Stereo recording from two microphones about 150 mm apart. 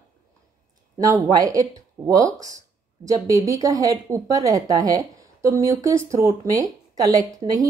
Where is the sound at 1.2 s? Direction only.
25° right (ahead or behind).